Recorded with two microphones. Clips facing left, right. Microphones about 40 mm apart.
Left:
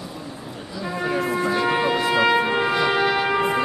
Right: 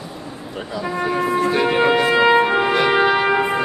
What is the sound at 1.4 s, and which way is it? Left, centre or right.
Music, right.